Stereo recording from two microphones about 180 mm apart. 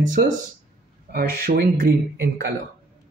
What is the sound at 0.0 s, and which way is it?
Speech, 50° right (ahead or behind).